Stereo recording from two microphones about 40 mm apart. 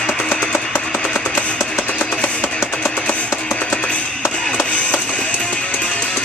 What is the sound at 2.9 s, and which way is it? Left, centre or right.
Music, left.